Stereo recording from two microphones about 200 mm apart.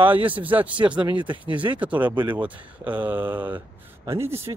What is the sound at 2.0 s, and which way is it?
Speech, 25° right (ahead or behind).